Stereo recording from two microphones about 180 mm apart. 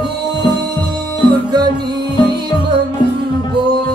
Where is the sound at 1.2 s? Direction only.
25° right (ahead or behind).